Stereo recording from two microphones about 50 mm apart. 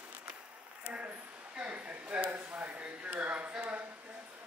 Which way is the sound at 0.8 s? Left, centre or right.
Right.